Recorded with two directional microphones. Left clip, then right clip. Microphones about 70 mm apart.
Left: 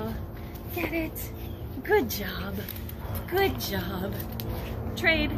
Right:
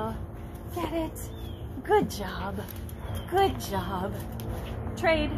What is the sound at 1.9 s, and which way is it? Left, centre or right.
Speech, left.